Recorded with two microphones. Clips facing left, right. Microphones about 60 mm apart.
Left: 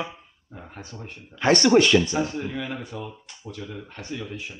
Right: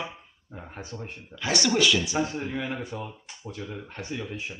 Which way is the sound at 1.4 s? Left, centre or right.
Left.